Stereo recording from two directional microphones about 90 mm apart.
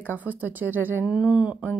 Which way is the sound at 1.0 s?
10° right (ahead or behind).